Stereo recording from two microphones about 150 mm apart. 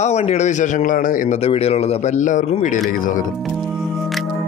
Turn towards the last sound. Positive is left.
turn(degrees=65)  # may be behind; listen again after turning